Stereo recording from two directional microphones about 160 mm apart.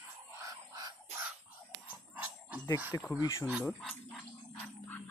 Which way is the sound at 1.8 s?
10° right (ahead or behind).